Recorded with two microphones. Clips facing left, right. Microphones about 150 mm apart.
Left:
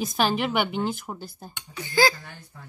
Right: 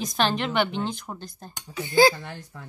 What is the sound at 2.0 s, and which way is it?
Speech, 25° right (ahead or behind).